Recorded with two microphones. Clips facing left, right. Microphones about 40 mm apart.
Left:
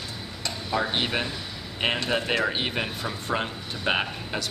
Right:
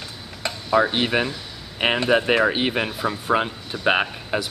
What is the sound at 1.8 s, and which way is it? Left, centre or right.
Speech, right.